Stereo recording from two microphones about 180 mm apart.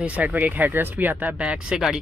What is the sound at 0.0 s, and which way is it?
Speech, 10° right (ahead or behind).